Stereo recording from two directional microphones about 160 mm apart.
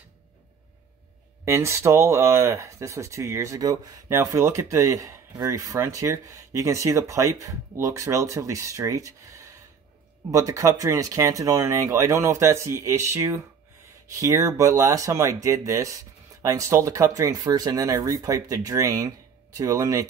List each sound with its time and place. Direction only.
1.4 s speech: 15° right (ahead or behind)